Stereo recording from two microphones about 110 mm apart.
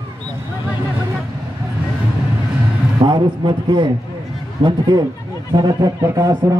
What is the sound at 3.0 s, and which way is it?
A man's voice, 45° right (ahead or behind).